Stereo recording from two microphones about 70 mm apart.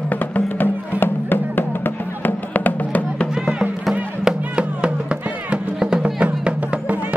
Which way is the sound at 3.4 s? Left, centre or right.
Centre.